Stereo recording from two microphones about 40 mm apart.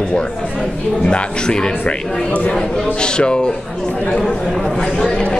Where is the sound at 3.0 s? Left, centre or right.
Left.